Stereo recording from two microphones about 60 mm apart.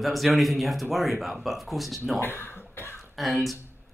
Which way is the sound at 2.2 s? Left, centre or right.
Left.